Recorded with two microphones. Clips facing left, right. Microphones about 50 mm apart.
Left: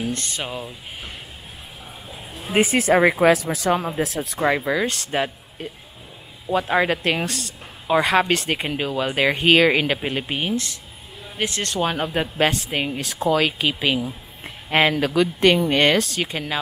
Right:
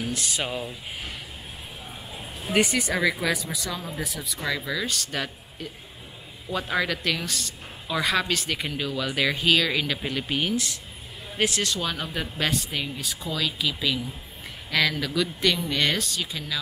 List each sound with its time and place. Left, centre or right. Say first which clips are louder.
0.3 s speech: even; centre
2.9 s speech: left 9 dB; left
4.0 s speech: left 8 dB; left
4.4 s speech: left 8 dB; left
13.0 s speech: left 10 dB; left
13.3 s speech: left 8 dB; left